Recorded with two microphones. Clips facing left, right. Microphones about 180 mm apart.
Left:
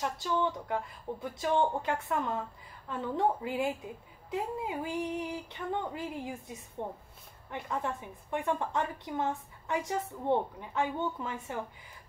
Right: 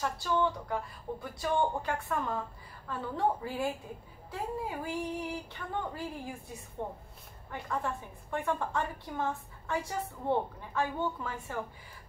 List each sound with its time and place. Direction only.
0.0 s a woman's voice: 20° left (ahead or behind)